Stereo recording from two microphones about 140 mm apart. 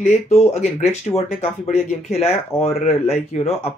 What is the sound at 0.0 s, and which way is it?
Speech, 55° left (ahead or behind).